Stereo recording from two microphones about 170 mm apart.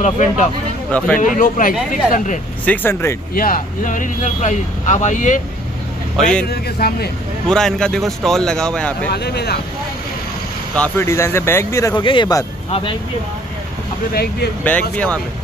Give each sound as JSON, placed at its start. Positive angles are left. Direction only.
{"t": 0.0, "sound": "speech", "side_deg": 45}
{"t": 0.9, "sound": "speech", "side_deg": 5}
{"t": 1.2, "sound": "speech", "side_deg": 50}
{"t": 1.7, "sound": "speech", "side_deg": -5}
{"t": 2.1, "sound": "speech", "side_deg": 50}
{"t": 2.6, "sound": "speech", "side_deg": 10}
{"t": 3.3, "sound": "speech", "side_deg": 55}
{"t": 6.5, "sound": "speech", "side_deg": 70}
{"t": 7.4, "sound": "speech", "side_deg": 5}
{"t": 9.1, "sound": "speech", "side_deg": 75}
{"t": 10.8, "sound": "speech", "side_deg": 15}
{"t": 14.6, "sound": "speech", "side_deg": 10}